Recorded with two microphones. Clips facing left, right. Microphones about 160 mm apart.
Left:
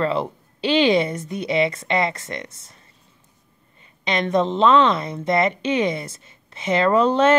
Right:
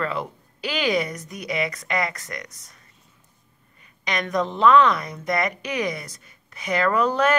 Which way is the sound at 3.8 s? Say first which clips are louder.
Left 5 dB; 25° left (ahead or behind).